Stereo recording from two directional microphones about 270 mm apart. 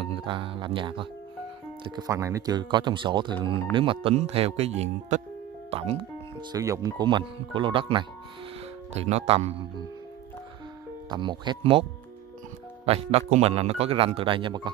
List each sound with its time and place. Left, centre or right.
0.0 s speech: centre
11.1 s speech: centre
12.8 s speech: right